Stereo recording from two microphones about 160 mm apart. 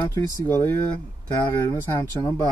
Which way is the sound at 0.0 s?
15° left (ahead or behind).